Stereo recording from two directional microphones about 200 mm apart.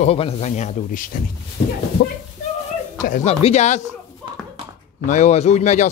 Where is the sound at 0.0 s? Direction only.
30° left (ahead or behind).